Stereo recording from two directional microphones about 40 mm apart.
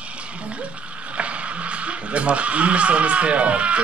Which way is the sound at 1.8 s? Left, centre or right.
Right.